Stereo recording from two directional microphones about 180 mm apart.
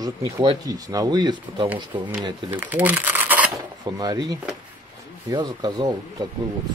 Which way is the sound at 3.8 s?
20° right (ahead or behind).